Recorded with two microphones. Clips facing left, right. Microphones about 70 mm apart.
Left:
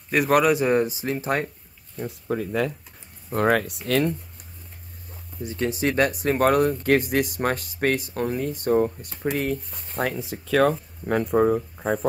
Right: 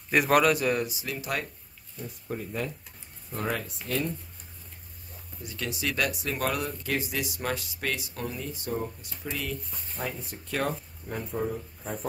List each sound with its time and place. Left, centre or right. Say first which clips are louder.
0.1 s a man's voice: left 3 dB; centre
0.5 s speech: left 6 dB; left
2.0 s speech: left 8 dB; left
3.3 s speech: left 11 dB; left
3.8 s speech: left 5 dB; left
5.4 s speech: left 9 dB; left
10.0 s speech: left 7 dB; left
11.1 s speech: left 12 dB; left